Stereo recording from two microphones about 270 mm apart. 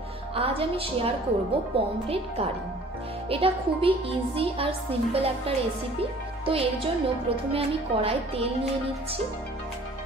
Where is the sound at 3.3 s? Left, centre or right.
Right.